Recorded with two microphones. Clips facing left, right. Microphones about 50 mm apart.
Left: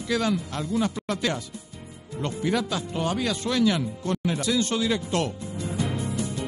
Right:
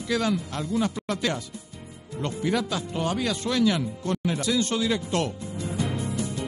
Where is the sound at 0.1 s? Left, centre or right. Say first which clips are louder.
Even; left.